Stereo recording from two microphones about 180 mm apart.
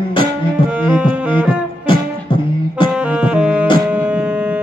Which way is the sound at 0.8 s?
10° right (ahead or behind).